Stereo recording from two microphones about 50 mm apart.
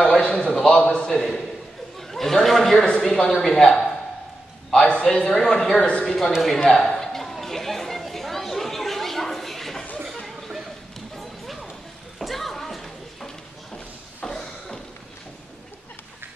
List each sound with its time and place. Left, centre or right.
0.0 s a man's voice: centre
0.6 s a sound: centre
2.0 s chatter: centre
3.0 s speech: centre
5.3 s a man's voice: centre
6.7 s chatter: centre
11.1 s clip-clop: centre
12.2 s a sound: centre